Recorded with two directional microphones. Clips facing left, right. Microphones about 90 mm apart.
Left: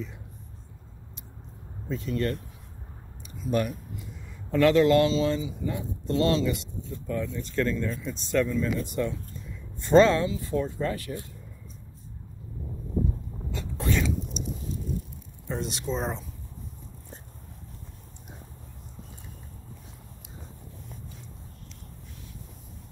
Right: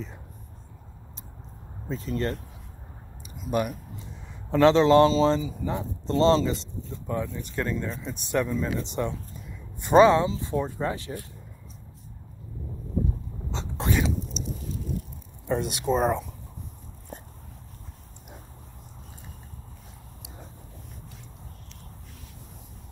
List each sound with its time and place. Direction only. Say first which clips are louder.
1.9 s speech: even; 35° right (ahead or behind)
3.2 s a sound: even; 10° right (ahead or behind)
4.3 s speech: right 2 dB; 25° right (ahead or behind)
7.2 s speech: left 3 dB; 15° right (ahead or behind)
13.5 s a sound: right 1 dB; 25° right (ahead or behind)
15.4 s speech: right 6 dB; 55° right (ahead or behind)